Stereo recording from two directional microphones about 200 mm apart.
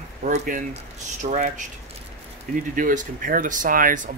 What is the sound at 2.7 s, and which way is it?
Speech, 40° right (ahead or behind).